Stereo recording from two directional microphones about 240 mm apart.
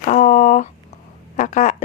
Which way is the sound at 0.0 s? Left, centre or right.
Left.